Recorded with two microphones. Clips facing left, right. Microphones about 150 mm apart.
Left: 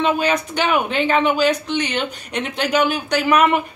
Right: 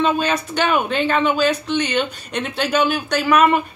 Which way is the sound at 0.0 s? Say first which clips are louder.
Even; 15° left (ahead or behind).